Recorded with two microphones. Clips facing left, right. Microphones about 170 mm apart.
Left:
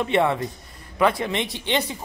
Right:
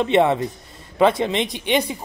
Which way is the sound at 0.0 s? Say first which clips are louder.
Right 4 dB; 20° right (ahead or behind).